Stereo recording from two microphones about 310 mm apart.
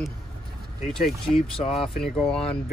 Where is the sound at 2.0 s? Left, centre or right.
Centre.